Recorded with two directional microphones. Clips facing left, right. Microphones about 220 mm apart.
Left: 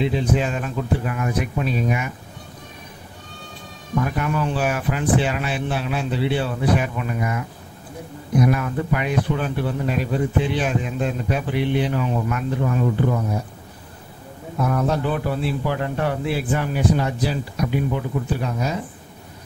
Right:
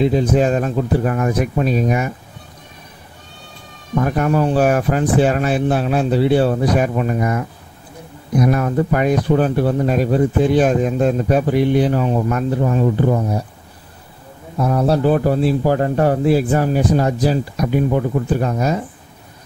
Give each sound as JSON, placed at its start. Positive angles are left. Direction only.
{"t": 0.0, "sound": "speech", "side_deg": -40}
{"t": 3.9, "sound": "speech", "side_deg": -45}
{"t": 8.5, "sound": "speech", "side_deg": -40}
{"t": 14.6, "sound": "speech", "side_deg": -35}